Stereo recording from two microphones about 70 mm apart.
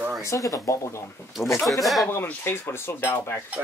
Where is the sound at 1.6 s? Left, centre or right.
Centre.